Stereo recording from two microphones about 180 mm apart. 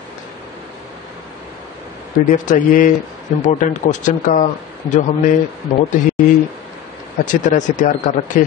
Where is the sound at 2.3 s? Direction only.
45° left (ahead or behind).